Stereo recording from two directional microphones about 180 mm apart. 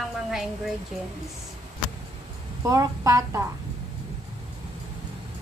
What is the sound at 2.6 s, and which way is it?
Speech, 20° right (ahead or behind).